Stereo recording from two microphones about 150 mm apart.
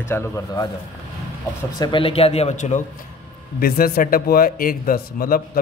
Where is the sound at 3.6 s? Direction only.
80° left.